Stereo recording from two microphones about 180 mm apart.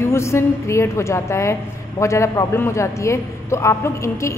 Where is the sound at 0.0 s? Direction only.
15° left (ahead or behind).